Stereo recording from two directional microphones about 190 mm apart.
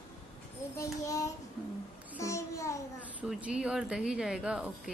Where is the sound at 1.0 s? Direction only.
15° left (ahead or behind).